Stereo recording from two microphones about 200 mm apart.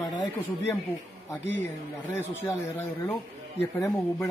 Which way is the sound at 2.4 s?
10° left (ahead or behind).